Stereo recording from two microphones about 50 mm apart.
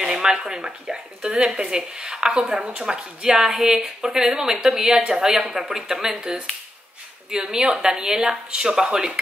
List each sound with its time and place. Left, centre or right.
0.0 s speech: centre
2.4 s speech: right
7.5 s speech: centre